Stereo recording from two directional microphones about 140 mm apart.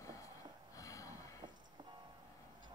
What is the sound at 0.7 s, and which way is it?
Sniff, 25° left (ahead or behind).